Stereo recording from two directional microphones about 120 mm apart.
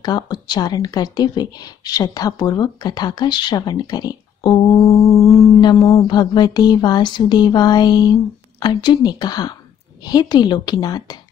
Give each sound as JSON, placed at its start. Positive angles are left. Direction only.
{"t": 0.0, "sound": "a woman's voice", "side_deg": 35}
{"t": 4.6, "sound": "mantra", "side_deg": 25}
{"t": 5.3, "sound": "a sound", "side_deg": 25}
{"t": 5.6, "sound": "a woman's voice", "side_deg": 40}